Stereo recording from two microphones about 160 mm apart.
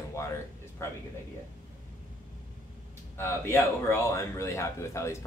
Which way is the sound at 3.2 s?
15° left (ahead or behind).